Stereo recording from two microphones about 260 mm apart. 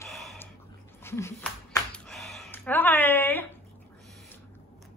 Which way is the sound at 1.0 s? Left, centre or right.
Centre.